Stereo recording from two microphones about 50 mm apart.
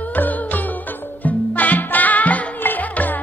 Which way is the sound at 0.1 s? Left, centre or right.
Left.